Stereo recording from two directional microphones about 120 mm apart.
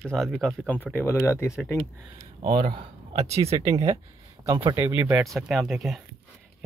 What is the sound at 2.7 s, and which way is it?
Speech, 65° right (ahead or behind).